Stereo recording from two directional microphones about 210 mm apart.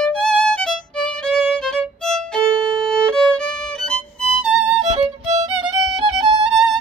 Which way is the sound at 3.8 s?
5° left (ahead or behind).